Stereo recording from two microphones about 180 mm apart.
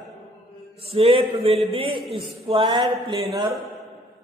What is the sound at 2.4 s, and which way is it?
Speech, 30° right (ahead or behind).